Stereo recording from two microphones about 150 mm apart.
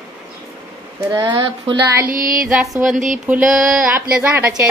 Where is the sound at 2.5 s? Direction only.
5° right (ahead or behind).